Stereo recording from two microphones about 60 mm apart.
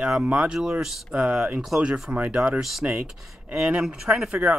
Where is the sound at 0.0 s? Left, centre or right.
Centre.